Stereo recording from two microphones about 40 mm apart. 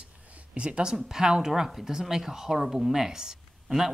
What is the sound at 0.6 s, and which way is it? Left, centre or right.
Speech, right.